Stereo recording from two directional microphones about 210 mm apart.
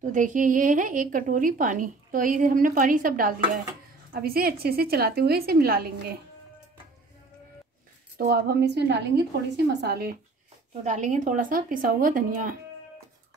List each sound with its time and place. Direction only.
0.0 s a woman's voice: 40° right (ahead or behind)
8.2 s a woman's voice: 45° right (ahead or behind)
10.8 s a woman's voice: 35° right (ahead or behind)